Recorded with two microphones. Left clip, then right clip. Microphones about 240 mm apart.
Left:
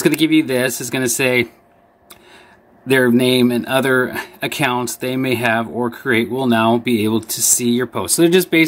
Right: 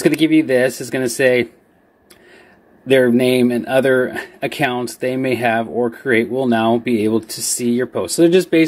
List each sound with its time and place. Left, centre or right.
0.0 s speech: centre
2.9 s speech: centre